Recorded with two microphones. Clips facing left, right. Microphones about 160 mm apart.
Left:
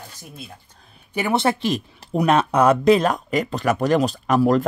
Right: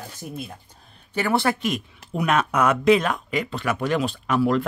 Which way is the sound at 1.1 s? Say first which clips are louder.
Left 2 dB; 20° left (ahead or behind).